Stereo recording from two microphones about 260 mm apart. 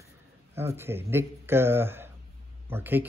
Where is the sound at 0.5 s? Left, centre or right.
Centre.